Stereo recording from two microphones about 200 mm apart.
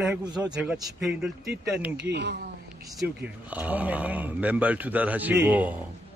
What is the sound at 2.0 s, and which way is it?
Speech, 60° right (ahead or behind).